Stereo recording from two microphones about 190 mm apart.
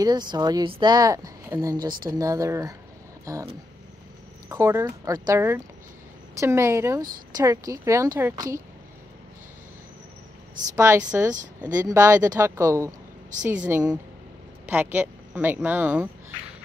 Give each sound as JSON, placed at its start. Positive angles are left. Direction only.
{"t": 0.0, "sound": "a woman's voice", "side_deg": -20}
{"t": 4.5, "sound": "speech", "side_deg": -15}
{"t": 10.8, "sound": "speech", "side_deg": -10}